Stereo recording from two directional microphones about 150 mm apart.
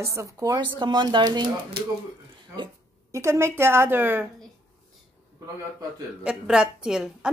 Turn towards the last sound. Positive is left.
turn(degrees=-5)  # may be behind; listen again after turning